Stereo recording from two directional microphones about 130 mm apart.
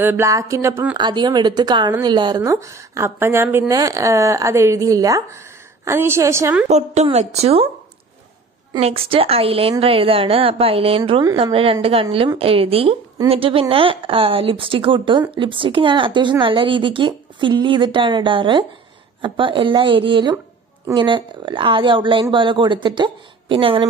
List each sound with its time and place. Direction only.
0.0 s a woman's voice: 20° right (ahead or behind)
0.9 s a woman's voice: 35° right (ahead or behind)
6.7 s a woman's voice: 60° right (ahead or behind)
8.7 s a woman's voice: 50° right (ahead or behind)